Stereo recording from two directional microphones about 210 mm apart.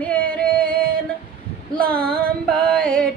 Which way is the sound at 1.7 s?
5° left (ahead or behind).